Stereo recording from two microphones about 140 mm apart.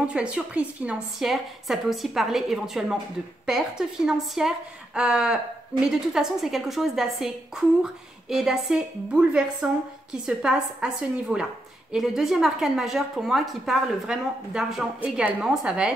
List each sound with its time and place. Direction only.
0.0 s a woman's voice: 5° right (ahead or behind)